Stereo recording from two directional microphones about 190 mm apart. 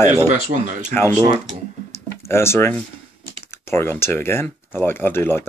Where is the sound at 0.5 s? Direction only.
40° right (ahead or behind).